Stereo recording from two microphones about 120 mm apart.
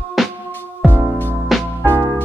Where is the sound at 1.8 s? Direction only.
15° right (ahead or behind).